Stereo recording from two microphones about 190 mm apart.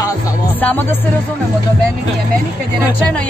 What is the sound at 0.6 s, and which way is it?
Music, 10° left (ahead or behind).